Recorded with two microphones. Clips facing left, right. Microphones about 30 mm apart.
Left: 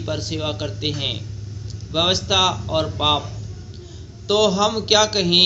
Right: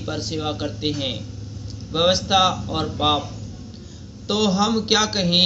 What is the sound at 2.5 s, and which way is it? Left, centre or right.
Speech, centre.